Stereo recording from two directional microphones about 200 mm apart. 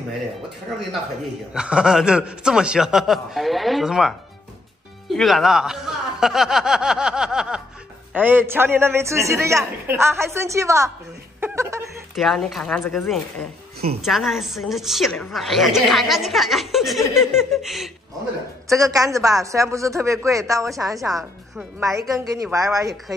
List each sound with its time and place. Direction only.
1.5 s a woman's voice: 5° right (ahead or behind)
5.1 s a man's voice: centre (ahead or behind)
11.4 s a sound: 15° right (ahead or behind)
12.2 s a woman's voice: centre (ahead or behind)
18.7 s a man's voice: 15° right (ahead or behind)
21.0 s a woman's voice: centre (ahead or behind)
21.7 s a man's voice: 15° right (ahead or behind)